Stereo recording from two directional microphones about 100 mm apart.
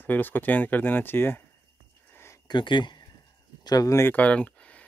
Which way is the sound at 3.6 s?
45° left (ahead or behind).